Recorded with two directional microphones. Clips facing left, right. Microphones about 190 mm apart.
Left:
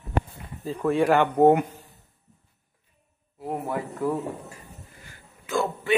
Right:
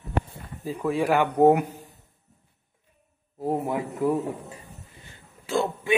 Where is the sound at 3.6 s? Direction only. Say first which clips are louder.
Left 1 dB; 15° right (ahead or behind).